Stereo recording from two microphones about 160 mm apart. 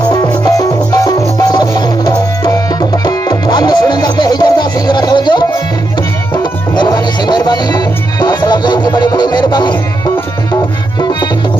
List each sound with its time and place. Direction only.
0.1 s music: 25° left (ahead or behind)
6.8 s music: 25° left (ahead or behind)